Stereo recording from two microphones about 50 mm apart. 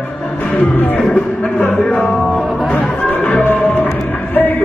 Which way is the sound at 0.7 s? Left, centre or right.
Left.